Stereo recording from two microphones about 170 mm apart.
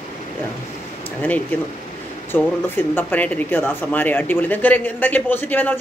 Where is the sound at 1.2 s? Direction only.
10° left (ahead or behind).